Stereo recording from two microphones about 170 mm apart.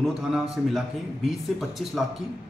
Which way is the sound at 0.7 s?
Centre (ahead or behind).